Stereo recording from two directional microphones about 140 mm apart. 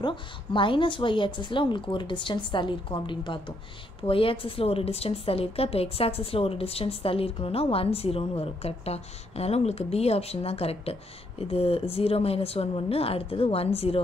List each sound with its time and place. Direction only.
0.0 s a woman's voice: 35° left (ahead or behind)